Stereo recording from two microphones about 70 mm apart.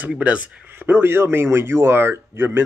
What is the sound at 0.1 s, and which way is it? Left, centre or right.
Speech, centre.